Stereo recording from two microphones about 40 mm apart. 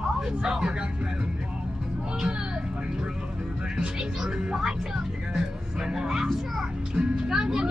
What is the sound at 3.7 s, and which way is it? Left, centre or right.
Speech, centre.